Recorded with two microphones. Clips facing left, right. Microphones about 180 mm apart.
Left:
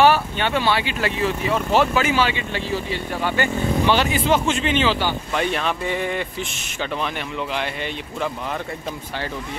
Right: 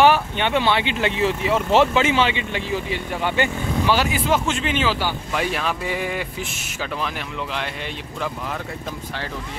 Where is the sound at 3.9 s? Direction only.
5° right (ahead or behind).